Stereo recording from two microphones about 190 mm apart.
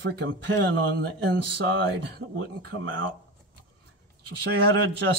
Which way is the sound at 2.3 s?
90° right.